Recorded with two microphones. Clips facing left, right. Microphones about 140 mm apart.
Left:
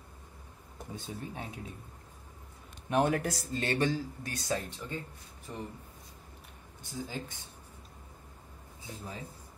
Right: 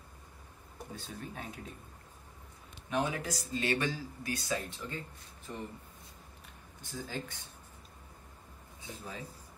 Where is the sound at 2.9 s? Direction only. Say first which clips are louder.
Left 5 dB; 60° left (ahead or behind).